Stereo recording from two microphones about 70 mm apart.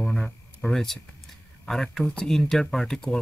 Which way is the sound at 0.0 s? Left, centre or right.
Centre.